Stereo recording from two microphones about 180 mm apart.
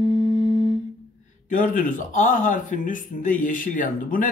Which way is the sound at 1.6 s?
50° left (ahead or behind).